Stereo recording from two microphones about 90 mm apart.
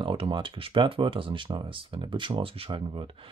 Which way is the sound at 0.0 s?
70° right (ahead or behind).